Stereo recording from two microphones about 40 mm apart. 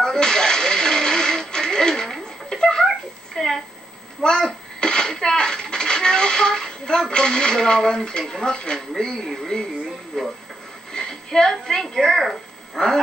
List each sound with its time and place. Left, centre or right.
0.0 s a sound: centre
8.7 s speech: centre
10.9 s music: centre
11.5 s speech: centre